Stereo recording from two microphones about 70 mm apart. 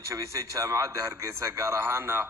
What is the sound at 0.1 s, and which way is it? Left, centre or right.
A man's voice, right.